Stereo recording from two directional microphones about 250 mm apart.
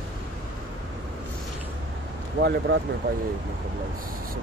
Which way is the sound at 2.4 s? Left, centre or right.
Right.